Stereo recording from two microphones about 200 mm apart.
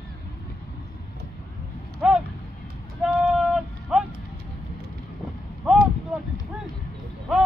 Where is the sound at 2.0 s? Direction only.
Centre (ahead or behind).